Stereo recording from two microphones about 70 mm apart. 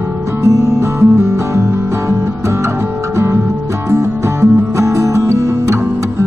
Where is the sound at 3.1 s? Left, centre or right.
Right.